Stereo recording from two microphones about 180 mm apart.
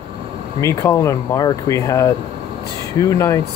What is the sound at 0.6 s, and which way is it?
Speech, 15° left (ahead or behind).